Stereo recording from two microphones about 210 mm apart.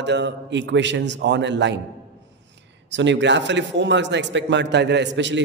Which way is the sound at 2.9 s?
60° right (ahead or behind).